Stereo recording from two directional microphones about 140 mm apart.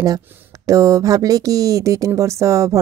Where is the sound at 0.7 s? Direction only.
20° right (ahead or behind).